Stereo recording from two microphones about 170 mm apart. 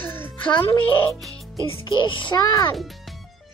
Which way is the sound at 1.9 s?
30° left (ahead or behind).